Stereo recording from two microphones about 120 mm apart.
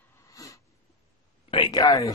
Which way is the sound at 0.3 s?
30° left (ahead or behind).